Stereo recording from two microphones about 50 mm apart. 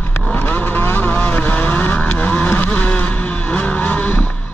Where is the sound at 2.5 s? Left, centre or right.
Left.